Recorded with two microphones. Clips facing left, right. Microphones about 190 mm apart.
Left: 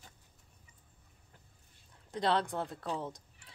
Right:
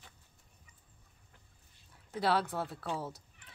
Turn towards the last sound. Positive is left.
turn(degrees=-5)  # may be behind; listen again after turning